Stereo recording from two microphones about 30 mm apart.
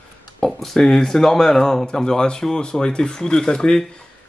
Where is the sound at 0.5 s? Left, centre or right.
Centre.